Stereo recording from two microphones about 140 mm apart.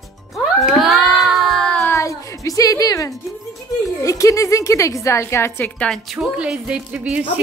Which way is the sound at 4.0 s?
20° left (ahead or behind).